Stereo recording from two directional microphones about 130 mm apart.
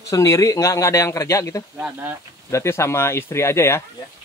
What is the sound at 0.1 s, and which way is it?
Speech, 25° left (ahead or behind).